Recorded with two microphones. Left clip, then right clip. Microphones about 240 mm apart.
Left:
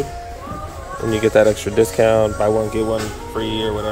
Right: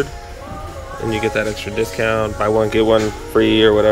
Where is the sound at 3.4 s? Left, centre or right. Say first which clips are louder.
Right 10 dB; centre.